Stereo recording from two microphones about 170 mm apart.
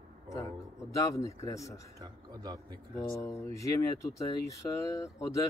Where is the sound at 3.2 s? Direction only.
15° left (ahead or behind).